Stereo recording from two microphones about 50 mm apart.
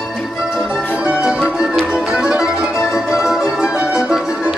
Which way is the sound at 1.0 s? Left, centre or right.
Centre.